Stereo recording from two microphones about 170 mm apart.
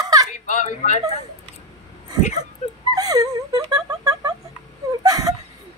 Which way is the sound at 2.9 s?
20° right (ahead or behind).